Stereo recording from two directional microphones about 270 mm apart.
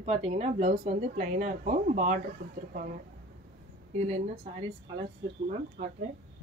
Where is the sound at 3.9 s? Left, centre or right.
Right.